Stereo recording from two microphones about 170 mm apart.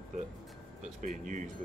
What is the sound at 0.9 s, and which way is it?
Speech, 50° right (ahead or behind).